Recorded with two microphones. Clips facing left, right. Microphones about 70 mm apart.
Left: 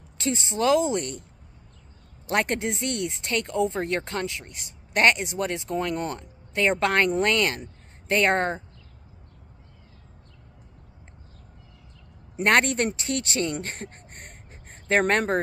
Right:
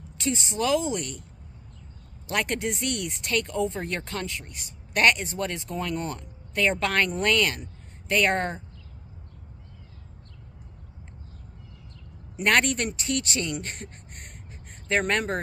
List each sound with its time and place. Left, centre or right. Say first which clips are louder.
0.2 s speech: left 2 dB; left
2.2 s speech: left 2 dB; left
12.4 s speech: left 2 dB; left